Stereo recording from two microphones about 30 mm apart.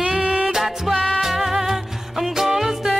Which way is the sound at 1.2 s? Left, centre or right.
Centre.